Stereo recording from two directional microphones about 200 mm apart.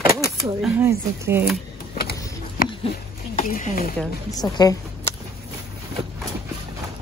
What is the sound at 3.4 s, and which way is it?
Speech, 45° left (ahead or behind).